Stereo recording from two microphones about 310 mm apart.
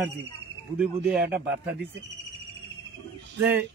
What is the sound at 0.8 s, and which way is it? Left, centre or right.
Speech, centre.